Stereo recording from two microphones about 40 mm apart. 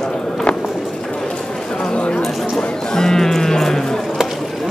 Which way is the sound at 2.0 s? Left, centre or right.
Left.